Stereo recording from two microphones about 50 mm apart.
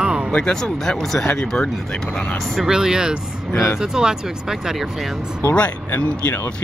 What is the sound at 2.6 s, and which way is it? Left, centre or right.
Speech, centre.